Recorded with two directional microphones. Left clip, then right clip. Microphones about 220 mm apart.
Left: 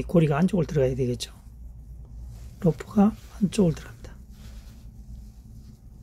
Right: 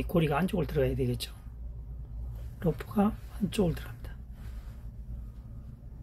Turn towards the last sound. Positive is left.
turn(degrees=45)  # may be behind; listen again after turning